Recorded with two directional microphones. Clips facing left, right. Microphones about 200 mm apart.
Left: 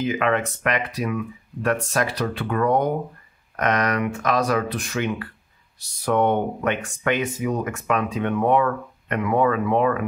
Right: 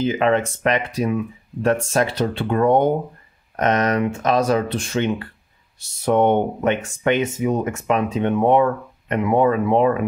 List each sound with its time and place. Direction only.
0.0 s speech: 30° right (ahead or behind)